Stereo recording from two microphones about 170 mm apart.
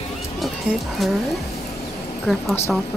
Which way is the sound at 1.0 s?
Centre (ahead or behind).